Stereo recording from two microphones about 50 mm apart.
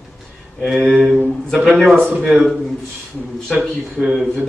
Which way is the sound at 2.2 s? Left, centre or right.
Centre.